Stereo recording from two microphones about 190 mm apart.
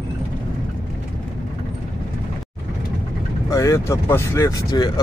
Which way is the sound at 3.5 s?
15° left (ahead or behind).